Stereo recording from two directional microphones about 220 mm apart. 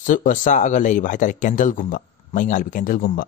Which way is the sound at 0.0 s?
35° left (ahead or behind).